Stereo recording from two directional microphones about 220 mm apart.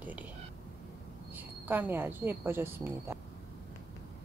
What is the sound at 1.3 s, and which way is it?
Speech, 10° right (ahead or behind).